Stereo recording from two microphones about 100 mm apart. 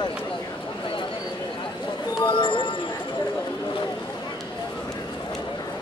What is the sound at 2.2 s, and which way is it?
Music, 55° left (ahead or behind).